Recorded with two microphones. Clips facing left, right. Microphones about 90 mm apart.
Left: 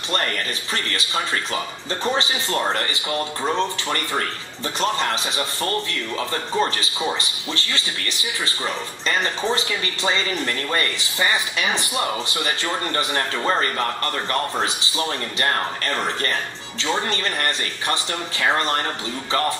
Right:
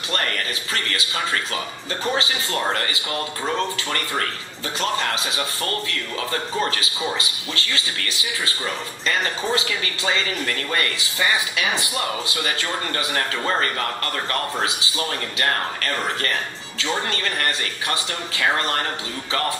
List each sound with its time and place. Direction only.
2.0 s speech: 25° left (ahead or behind)
9.0 s speech: 30° left (ahead or behind)
14.6 s speech: 25° left (ahead or behind)